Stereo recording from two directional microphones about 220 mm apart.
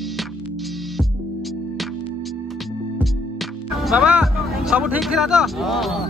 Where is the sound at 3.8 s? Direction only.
5° right (ahead or behind).